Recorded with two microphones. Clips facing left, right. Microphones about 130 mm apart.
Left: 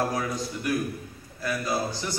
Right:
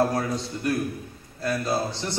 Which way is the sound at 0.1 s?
30° right (ahead or behind).